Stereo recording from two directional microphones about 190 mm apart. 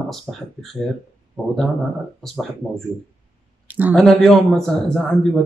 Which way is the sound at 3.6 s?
10° right (ahead or behind).